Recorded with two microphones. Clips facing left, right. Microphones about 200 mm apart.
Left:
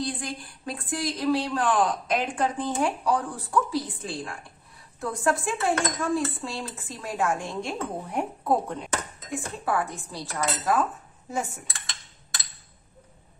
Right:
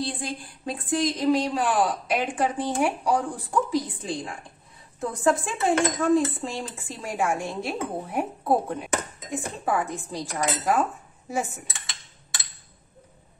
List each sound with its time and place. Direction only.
0.0 s a woman's voice: 25° right (ahead or behind)
5.0 s cutlery: 20° right (ahead or behind)
7.0 s a woman's voice: 10° right (ahead or behind)
9.3 s a woman's voice: 15° right (ahead or behind)